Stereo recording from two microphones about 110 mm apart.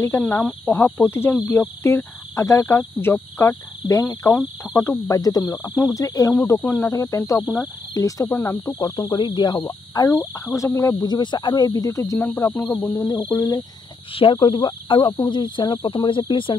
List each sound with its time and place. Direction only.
0.7 s cricket: 25° left (ahead or behind)
4.4 s cricket: 5° right (ahead or behind)
5.0 s cricket: 35° left (ahead or behind)
8.7 s cricket: 35° left (ahead or behind)
14.1 s speech: 50° left (ahead or behind)